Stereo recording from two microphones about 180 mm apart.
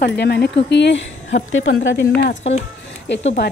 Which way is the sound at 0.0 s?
65° left (ahead or behind).